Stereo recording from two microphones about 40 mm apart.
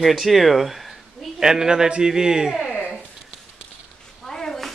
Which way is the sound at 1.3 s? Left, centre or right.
Centre.